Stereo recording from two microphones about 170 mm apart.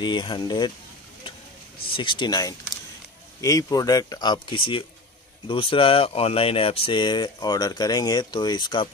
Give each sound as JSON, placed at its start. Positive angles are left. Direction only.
{"t": 0.0, "sound": "speech", "side_deg": 25}
{"t": 2.0, "sound": "speech", "side_deg": 30}